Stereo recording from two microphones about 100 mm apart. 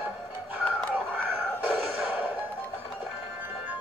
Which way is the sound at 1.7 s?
Centre (ahead or behind).